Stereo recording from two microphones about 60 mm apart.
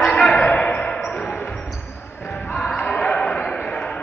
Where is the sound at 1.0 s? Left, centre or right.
Centre.